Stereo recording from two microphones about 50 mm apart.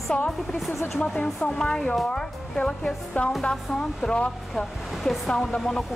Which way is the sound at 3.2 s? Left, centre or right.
Left.